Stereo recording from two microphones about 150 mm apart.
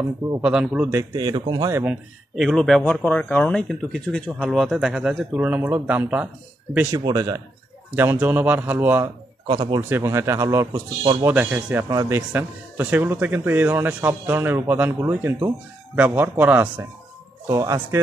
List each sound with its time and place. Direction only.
0.4 s speech: 5° right (ahead or behind)
1.1 s speech: 25° right (ahead or behind)
1.7 s speech: 15° right (ahead or behind)
2.3 s speech: centre (ahead or behind)
7.1 s speech: 25° right (ahead or behind)
7.9 s speech: 10° right (ahead or behind)
9.5 s speech: 30° right (ahead or behind)
9.8 s speech: 15° right (ahead or behind)
17.5 s speech: 20° right (ahead or behind)